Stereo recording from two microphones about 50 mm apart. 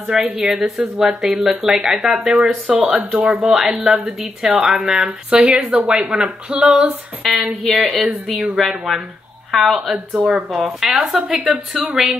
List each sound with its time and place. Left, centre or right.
0.0 s speech: centre
0.7 s speech: centre
2.6 s speech: right
3.4 s speech: centre
7.2 s a woman's voice: centre
9.9 s speech: right
10.3 s speech: centre
11.7 s a woman's voice: centre